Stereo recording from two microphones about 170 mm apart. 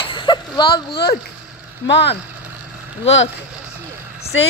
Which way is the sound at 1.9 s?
90° left.